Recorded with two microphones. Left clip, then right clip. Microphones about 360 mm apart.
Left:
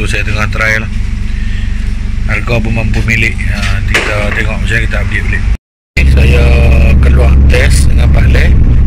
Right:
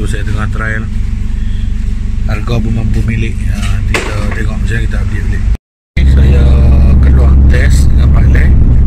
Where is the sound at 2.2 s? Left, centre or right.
Centre.